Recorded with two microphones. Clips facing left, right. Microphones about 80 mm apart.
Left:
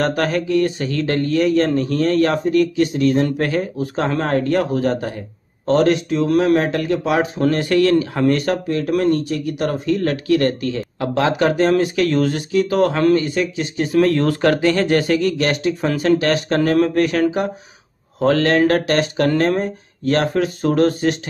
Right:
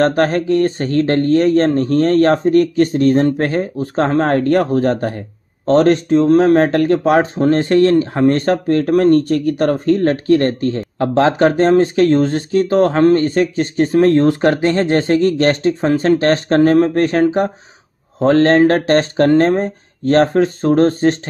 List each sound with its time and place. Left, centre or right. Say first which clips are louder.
0.0 s speech: right 5 dB; right
7.3 s speech: right 4 dB; right
13.9 s speech: right 4 dB; right